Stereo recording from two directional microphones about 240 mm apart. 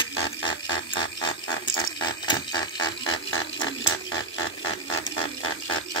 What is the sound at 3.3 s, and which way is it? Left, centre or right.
Pig, left.